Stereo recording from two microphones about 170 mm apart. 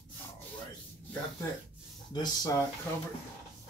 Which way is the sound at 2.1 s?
25° left (ahead or behind).